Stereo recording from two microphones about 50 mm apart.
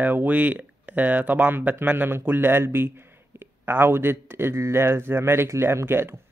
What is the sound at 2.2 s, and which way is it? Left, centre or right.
A man's voice, right.